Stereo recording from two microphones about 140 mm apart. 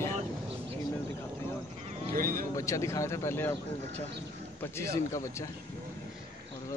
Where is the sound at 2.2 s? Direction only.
90° right.